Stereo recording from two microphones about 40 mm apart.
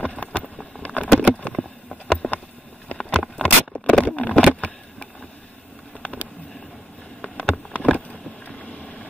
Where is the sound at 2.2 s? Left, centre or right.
Left.